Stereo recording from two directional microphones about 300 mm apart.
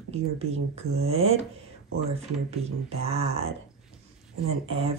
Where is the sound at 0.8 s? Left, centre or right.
Right.